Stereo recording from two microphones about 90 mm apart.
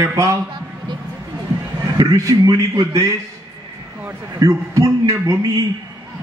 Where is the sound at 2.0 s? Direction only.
40° right (ahead or behind).